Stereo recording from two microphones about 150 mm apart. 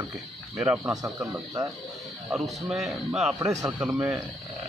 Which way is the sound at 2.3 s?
Centre (ahead or behind).